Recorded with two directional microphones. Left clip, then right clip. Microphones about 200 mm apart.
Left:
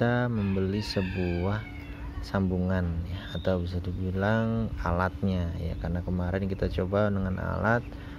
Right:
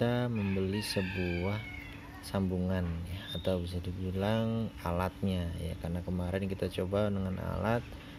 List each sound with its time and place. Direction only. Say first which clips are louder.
0.0 s chicken: left 5 dB; 5° right (ahead or behind)
2.3 s a man's voice: left 5 dB; 5° right (ahead or behind)